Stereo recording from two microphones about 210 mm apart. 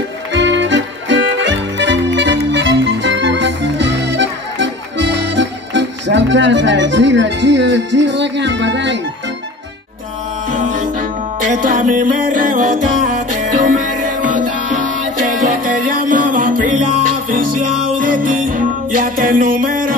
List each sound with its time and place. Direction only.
0.3 s music: 60° right (ahead or behind)
10.5 s music: 40° right (ahead or behind)